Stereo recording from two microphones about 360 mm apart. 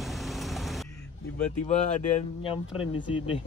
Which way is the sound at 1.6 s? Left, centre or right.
Centre.